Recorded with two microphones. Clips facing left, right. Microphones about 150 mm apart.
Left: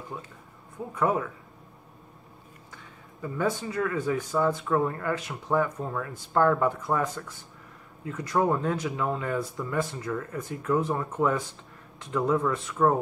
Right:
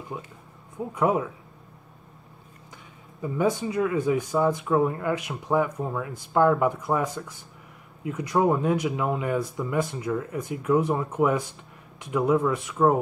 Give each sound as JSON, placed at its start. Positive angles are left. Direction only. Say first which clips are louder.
{"t": 0.9, "sound": "speech", "louder": "right 2 dB", "side_deg": -15}
{"t": 2.7, "sound": "speech", "louder": "even", "side_deg": -15}